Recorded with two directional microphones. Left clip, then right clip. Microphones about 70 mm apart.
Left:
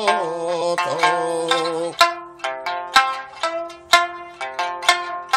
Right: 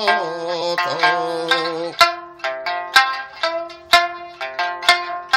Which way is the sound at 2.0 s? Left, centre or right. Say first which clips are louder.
Right 2 dB; right.